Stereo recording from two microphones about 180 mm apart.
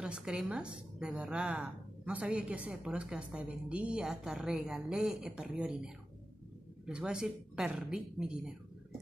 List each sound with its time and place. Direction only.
0.0 s a woman's voice: 5° right (ahead or behind)
6.9 s a woman's voice: 5° right (ahead or behind)